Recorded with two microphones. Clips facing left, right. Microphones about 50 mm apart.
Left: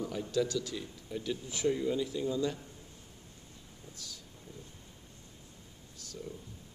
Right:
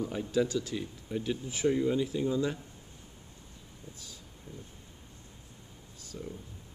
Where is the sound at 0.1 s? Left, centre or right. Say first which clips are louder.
Right 2 dB; right.